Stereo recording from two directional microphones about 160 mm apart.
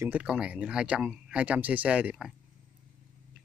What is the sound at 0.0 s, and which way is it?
Speech, 10° right (ahead or behind).